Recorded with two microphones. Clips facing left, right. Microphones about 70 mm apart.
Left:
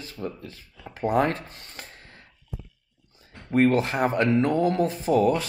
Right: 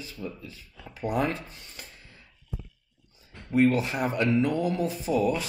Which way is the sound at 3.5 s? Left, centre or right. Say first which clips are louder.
Left 2 dB; left.